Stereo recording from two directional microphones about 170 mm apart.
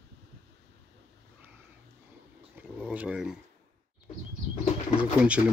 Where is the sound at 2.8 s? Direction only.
5° right (ahead or behind).